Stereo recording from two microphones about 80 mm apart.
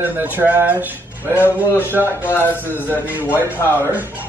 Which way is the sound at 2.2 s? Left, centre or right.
Left.